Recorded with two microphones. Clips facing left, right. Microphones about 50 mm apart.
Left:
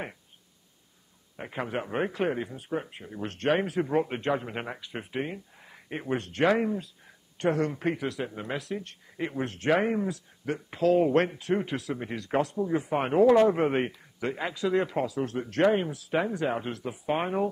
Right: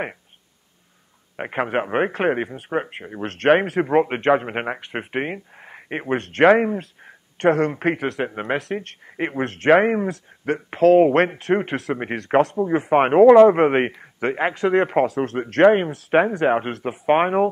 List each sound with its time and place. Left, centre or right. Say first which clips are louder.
1.3 s a man's voice: right 10 dB; right